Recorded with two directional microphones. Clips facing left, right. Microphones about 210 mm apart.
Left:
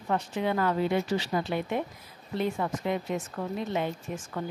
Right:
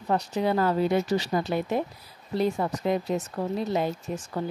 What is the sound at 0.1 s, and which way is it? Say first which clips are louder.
A woman's voice: right 3 dB; 35° right (ahead or behind).